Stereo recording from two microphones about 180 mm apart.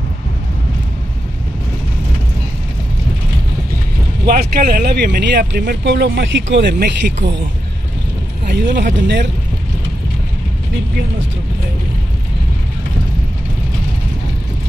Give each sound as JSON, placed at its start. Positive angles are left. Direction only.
{"t": 4.3, "sound": "speech", "side_deg": -55}
{"t": 8.5, "sound": "speech", "side_deg": -70}